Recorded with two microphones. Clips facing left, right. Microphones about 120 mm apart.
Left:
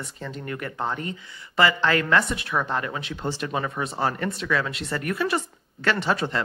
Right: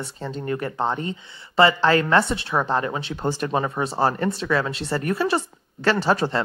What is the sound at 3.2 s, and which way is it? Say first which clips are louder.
A woman's voice: right 5 dB; 40° right (ahead or behind).